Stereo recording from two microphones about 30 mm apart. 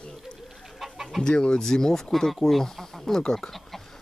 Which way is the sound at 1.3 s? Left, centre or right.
Left.